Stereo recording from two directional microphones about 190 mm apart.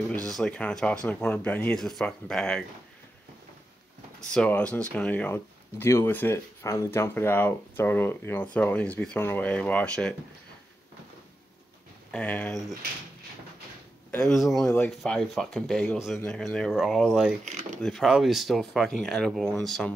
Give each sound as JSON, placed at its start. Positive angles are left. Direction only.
{"t": 0.3, "sound": "speech", "side_deg": 5}
{"t": 4.3, "sound": "speech", "side_deg": 5}
{"t": 12.1, "sound": "speech", "side_deg": 5}
{"t": 14.1, "sound": "speech", "side_deg": 0}
{"t": 17.5, "sound": "a sound", "side_deg": -40}
{"t": 17.8, "sound": "speech", "side_deg": 0}